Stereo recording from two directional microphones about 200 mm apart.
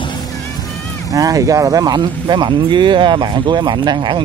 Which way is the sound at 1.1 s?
15° right (ahead or behind).